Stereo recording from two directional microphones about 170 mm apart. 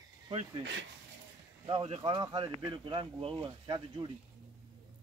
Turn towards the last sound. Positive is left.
turn(degrees=-25)  # may be behind; listen again after turning